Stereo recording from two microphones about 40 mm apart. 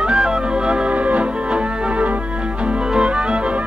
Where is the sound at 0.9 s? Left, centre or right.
Right.